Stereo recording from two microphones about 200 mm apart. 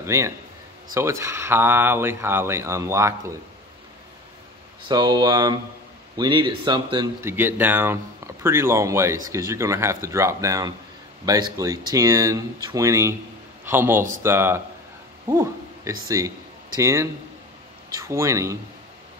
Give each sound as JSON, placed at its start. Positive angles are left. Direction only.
{"t": 0.0, "sound": "a man's voice", "side_deg": -15}
{"t": 4.8, "sound": "speech", "side_deg": -20}
{"t": 7.2, "sound": "speech", "side_deg": -10}
{"t": 15.2, "sound": "a sound", "side_deg": -15}
{"t": 16.1, "sound": "speech", "side_deg": -15}